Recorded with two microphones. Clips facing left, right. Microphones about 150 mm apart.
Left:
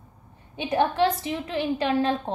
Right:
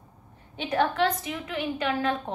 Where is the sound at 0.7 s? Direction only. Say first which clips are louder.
Left 2 dB; 25° left (ahead or behind).